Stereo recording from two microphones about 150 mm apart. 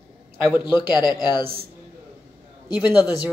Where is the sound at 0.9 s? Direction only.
30° left (ahead or behind).